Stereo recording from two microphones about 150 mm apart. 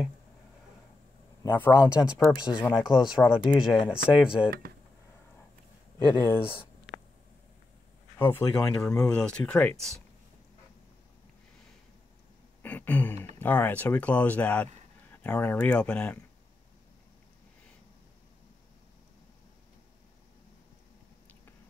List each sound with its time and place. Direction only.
1.4 s speech: 15° left (ahead or behind)
2.0 s speech: 5° right (ahead or behind)
2.6 s speech: 30° left (ahead or behind)
3.9 s speech: 5° right (ahead or behind)
6.1 s speech: 25° left (ahead or behind)
8.2 s speech: 15° left (ahead or behind)
12.6 s throat clearing: 10° left (ahead or behind)
13.4 s speech: 10° left (ahead or behind)